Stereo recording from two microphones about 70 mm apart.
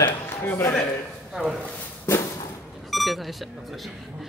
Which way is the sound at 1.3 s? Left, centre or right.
Centre.